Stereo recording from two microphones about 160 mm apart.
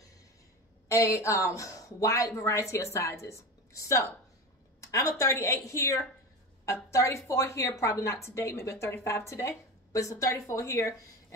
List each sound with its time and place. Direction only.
0.8 s a woman's voice: 20° left (ahead or behind)